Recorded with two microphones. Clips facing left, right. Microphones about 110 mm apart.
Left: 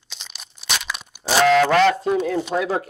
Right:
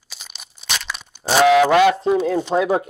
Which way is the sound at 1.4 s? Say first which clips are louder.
Right 2 dB; 10° right (ahead or behind).